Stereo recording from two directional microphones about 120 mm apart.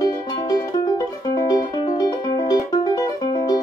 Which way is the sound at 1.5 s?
35° left (ahead or behind).